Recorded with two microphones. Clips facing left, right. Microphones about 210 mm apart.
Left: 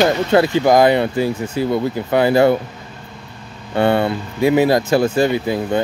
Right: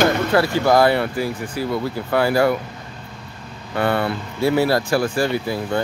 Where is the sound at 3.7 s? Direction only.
25° left (ahead or behind).